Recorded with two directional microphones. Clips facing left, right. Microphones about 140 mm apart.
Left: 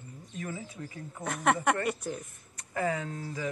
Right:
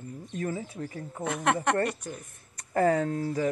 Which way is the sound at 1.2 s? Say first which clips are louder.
Right 1 dB; centre (ahead or behind).